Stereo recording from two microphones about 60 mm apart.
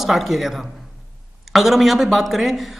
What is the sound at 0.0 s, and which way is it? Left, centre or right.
Speech, centre.